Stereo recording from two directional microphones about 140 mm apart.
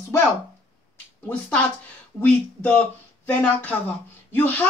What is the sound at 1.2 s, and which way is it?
Speech, 10° left (ahead or behind).